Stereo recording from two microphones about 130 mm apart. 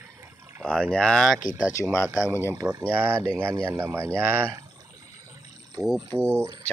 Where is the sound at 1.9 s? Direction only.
25° left (ahead or behind).